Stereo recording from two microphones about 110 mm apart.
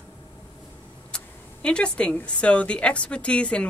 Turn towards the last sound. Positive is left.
turn(degrees=10)  # may be behind; listen again after turning